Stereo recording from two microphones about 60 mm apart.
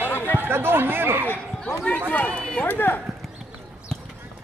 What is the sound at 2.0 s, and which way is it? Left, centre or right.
Speech, left.